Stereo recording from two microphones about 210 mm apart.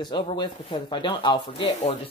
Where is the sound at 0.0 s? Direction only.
20° left (ahead or behind).